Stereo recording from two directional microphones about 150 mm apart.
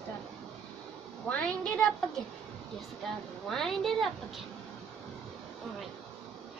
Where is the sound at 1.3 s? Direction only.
10° left (ahead or behind).